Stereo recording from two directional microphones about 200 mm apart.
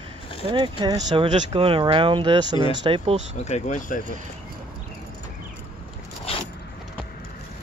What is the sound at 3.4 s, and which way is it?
Speech, 35° left (ahead or behind).